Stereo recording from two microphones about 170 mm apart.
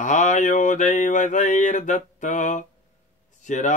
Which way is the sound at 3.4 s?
45° left (ahead or behind).